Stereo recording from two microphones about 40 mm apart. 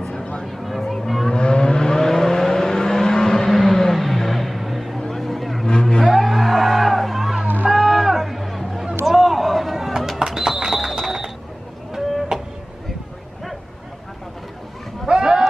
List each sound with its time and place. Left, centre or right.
0.0 s music: left
0.5 s music: centre
1.2 s vehicle: centre
3.9 s music: centre
5.1 s a sound: centre
5.7 s vehicle: centre
6.1 s music: centre
7.7 s a sound: centre
12.3 s vehicle: centre
15.0 s a sound: centre